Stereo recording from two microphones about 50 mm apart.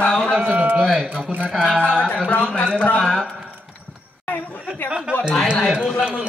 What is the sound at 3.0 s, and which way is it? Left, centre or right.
Speech, centre.